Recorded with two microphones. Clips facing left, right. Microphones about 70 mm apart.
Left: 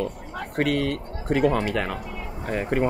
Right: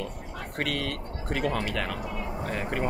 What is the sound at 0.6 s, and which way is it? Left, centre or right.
Speech, left.